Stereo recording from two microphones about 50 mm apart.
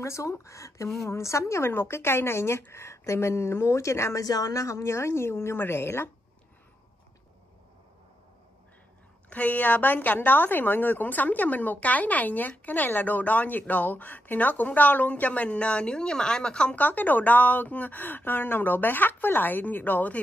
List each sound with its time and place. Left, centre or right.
0.0 s speech: left
1.0 s a woman's voice: left
1.7 s speech: left
9.3 s a woman's voice: left; by 16.7 s centre
16.7 s a woman's voice: left